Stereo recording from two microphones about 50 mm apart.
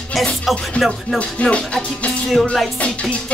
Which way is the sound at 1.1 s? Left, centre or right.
Left.